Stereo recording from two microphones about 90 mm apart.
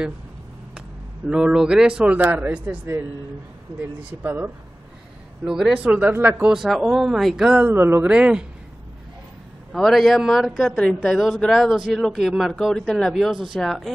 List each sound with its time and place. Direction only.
0.7 s speech: 10° right (ahead or behind)
5.4 s speech: 5° right (ahead or behind); by 6.4 s 20° right (ahead or behind)
6.4 s speech: 5° right (ahead or behind)
7.6 s speech: 25° right (ahead or behind)
8.1 s speech: 10° right (ahead or behind)
9.7 s speech: centre (ahead or behind)